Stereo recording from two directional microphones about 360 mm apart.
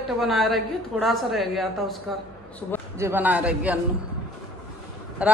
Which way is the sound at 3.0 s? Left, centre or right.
Centre.